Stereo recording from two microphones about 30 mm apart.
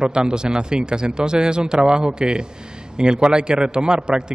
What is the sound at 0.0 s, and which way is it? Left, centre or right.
Speech, right.